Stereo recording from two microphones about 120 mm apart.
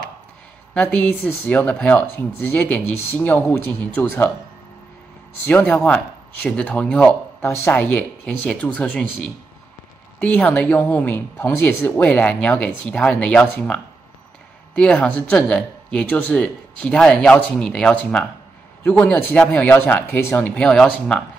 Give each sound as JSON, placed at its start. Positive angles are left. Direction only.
{"t": 0.7, "sound": "speech", "side_deg": 10}
{"t": 5.4, "sound": "speech", "side_deg": 15}
{"t": 7.4, "sound": "speech", "side_deg": 20}
{"t": 14.8, "sound": "speech", "side_deg": 10}